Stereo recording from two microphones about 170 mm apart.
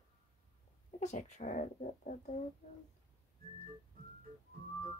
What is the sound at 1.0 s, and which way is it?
Speech, 45° left (ahead or behind).